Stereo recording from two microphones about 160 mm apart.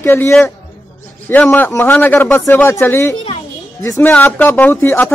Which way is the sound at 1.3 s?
10° left (ahead or behind).